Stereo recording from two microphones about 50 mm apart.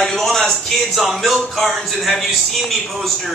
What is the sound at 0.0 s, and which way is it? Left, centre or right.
A man's voice, centre.